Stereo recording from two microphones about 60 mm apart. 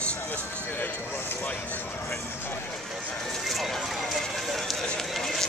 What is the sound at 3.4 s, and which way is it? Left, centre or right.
Speech, centre.